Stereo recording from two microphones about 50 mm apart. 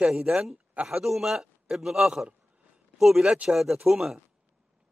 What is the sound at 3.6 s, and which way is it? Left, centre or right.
Speech, centre.